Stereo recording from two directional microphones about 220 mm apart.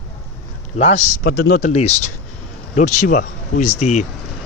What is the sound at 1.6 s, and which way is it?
Speech, 30° left (ahead or behind).